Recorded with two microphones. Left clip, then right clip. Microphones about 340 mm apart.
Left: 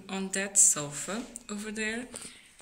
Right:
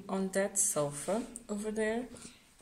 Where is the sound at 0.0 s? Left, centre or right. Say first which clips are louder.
Right 1 dB; right.